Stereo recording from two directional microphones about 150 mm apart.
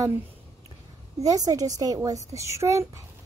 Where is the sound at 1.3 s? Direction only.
25° right (ahead or behind).